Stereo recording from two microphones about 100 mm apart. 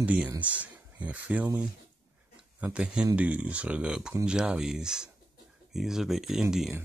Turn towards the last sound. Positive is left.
turn(degrees=-5)  # may be behind; listen again after turning